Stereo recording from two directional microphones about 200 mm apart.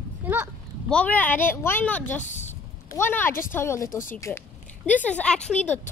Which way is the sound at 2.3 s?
35° left (ahead or behind).